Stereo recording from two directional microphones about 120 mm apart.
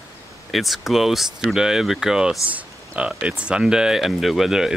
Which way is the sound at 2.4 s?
10° right (ahead or behind).